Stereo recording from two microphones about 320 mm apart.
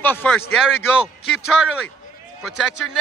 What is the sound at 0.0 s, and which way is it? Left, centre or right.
A man's voice, centre.